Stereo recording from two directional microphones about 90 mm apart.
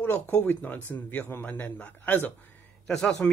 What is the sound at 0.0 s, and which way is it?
Speech, 20° left (ahead or behind).